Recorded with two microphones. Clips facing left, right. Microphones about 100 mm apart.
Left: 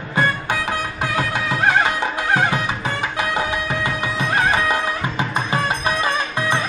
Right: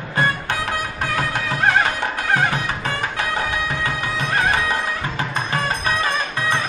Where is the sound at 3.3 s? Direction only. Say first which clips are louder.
Left 1 dB; 15° left (ahead or behind).